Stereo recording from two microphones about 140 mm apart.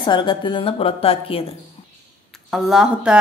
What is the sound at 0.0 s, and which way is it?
A woman's voice, 35° left (ahead or behind).